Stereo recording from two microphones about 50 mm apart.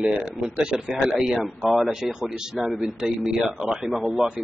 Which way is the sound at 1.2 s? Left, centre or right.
Centre.